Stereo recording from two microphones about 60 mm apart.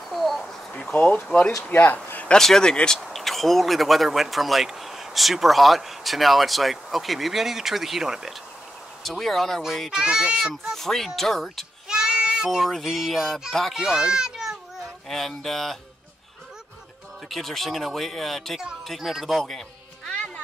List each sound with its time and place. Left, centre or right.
0.1 s a sound: centre
0.9 s speech: left
2.3 s speech: centre
3.0 s speech: centre
9.2 s speech: centre
9.8 s speech: centre
11.9 s child singing: centre
12.4 s speech: centre
13.7 s a child's voice: centre
15.0 s speech: centre
17.3 s speech: centre